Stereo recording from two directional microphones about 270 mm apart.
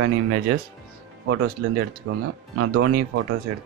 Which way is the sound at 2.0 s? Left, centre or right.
Right.